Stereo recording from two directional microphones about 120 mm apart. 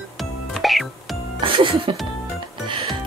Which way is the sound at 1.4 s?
50° right (ahead or behind).